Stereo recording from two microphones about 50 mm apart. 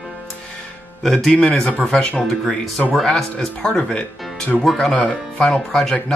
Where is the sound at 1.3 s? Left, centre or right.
Centre.